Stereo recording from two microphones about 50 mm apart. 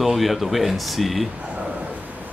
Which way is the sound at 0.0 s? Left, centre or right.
Centre.